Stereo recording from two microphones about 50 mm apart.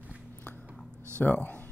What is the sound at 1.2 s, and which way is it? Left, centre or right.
Speech, left.